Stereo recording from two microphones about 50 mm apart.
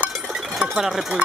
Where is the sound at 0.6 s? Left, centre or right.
Centre.